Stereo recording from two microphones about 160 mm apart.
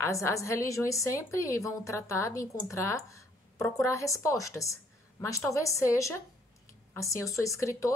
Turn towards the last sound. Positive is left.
turn(degrees=20)  # may be behind; listen again after turning